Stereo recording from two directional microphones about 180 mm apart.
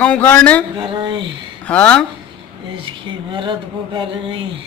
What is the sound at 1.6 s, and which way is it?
Speech, 10° left (ahead or behind).